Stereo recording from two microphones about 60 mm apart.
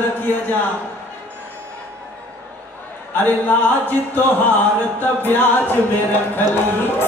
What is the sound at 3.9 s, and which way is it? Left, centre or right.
Music, left.